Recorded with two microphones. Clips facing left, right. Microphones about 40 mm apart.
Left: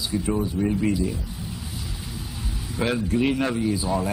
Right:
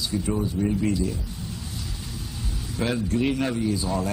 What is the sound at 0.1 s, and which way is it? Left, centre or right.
A man's voice, centre.